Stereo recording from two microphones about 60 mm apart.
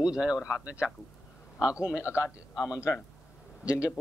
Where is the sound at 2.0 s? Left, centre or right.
Left.